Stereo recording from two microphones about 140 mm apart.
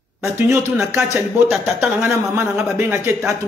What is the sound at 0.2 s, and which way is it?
Speech, 15° right (ahead or behind).